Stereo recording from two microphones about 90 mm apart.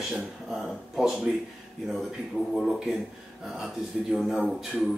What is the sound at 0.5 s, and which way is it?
Speech, 5° right (ahead or behind).